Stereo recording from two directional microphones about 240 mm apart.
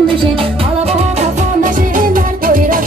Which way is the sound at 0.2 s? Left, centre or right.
Right.